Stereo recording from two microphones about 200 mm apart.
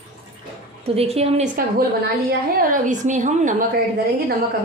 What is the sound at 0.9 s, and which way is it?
Speech, 30° right (ahead or behind).